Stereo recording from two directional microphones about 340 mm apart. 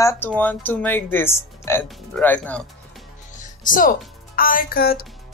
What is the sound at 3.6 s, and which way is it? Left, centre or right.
Speech, left.